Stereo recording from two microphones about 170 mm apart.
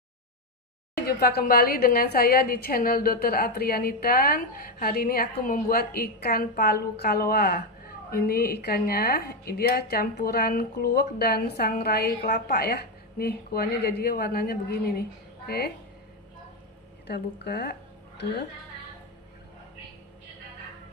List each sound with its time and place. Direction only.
1.0 s a woman's voice: 70° left (ahead or behind)
17.1 s speech: 80° left